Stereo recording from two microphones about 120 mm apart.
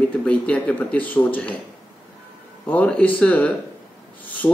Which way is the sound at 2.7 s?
10° left (ahead or behind).